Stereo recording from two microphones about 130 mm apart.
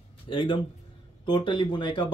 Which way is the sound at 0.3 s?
35° left (ahead or behind).